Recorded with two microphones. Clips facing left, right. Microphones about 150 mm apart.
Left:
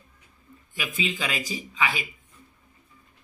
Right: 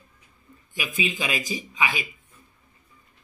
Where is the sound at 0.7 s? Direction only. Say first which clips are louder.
Right 1 dB; 15° right (ahead or behind).